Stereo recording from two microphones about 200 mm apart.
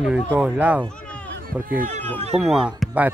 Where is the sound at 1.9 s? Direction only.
35° right (ahead or behind).